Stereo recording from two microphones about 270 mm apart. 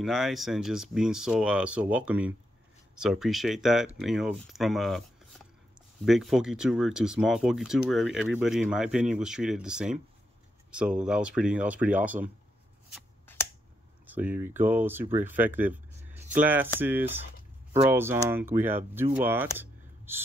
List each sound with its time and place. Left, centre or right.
0.0 s speech: centre
6.0 s speech: centre
12.9 s shuffling cards: centre
14.1 s speech: centre
19.6 s a sound: centre